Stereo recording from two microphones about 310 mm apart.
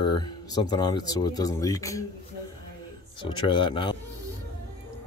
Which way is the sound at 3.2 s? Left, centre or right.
Centre.